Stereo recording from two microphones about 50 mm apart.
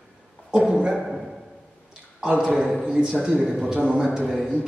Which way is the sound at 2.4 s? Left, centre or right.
Centre.